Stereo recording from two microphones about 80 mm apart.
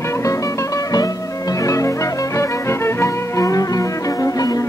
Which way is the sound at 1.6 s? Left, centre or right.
Left.